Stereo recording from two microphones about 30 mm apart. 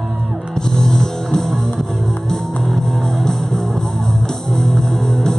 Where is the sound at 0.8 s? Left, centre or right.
Centre.